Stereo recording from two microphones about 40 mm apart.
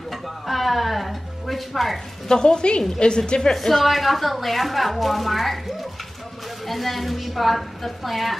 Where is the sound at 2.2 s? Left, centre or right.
Left.